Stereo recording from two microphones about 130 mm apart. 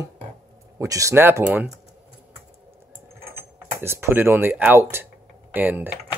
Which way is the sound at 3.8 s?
20° right (ahead or behind).